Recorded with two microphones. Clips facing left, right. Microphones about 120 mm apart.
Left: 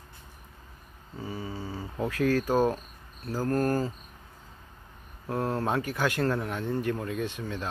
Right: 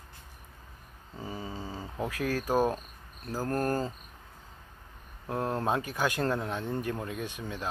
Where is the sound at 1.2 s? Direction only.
15° right (ahead or behind).